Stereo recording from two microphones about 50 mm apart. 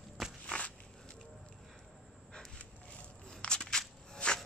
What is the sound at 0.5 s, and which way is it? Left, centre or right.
Walk, left.